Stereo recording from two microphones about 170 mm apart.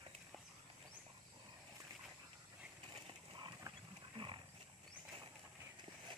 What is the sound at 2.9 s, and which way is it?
Mechanisms, 30° right (ahead or behind).